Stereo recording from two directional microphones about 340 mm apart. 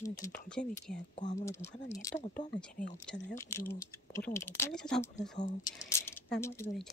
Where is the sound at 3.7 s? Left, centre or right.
Centre.